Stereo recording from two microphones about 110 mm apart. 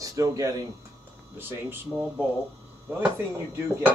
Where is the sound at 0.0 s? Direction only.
30° right (ahead or behind).